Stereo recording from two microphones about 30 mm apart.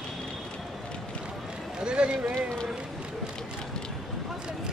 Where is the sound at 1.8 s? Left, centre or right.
Right.